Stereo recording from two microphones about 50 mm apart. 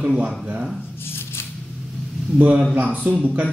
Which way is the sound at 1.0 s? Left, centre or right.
Left.